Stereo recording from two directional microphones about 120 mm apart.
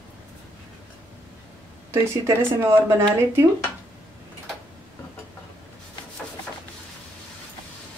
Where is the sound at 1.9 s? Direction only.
25° right (ahead or behind).